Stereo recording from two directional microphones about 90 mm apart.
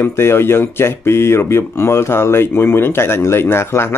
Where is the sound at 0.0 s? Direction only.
30° left (ahead or behind).